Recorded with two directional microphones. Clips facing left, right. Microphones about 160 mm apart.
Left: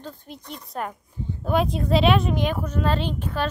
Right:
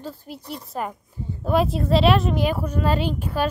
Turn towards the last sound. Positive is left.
turn(degrees=-10)  # may be behind; listen again after turning